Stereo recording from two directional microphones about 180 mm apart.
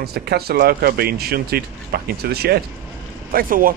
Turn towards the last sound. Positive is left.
turn(degrees=-50)  # may be behind; listen again after turning